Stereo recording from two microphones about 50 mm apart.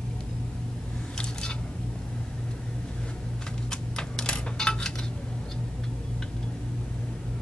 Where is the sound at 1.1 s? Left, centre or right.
Centre.